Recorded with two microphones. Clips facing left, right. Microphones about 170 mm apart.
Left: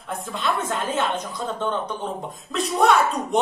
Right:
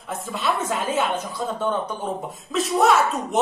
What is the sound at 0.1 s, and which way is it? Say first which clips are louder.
A woman's voice: right 1 dB; 5° right (ahead or behind).